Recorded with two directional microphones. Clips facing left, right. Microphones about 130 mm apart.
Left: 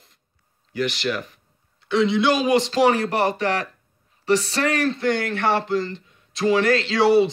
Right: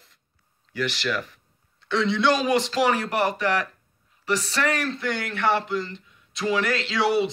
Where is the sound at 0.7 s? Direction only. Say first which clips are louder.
Left 3 dB; 20° left (ahead or behind).